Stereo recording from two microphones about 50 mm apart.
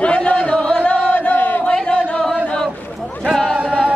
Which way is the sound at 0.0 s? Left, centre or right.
Left.